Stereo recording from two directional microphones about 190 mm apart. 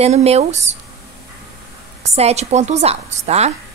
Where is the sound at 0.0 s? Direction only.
35° right (ahead or behind).